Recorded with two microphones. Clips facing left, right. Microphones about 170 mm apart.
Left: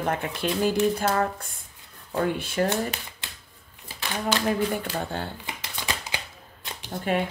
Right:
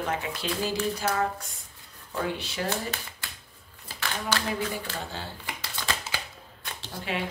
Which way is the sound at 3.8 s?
15° left (ahead or behind).